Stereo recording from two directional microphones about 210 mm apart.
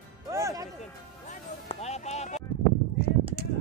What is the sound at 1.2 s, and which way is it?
Music, 30° left (ahead or behind).